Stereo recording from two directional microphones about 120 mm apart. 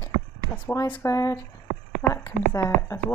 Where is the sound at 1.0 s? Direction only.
25° left (ahead or behind).